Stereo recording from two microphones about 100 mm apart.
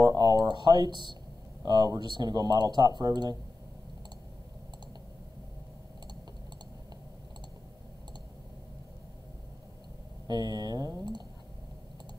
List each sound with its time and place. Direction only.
0.0 s a sound: 45° right (ahead or behind)
1.6 s speech: 40° right (ahead or behind)
10.2 s speech: 45° right (ahead or behind)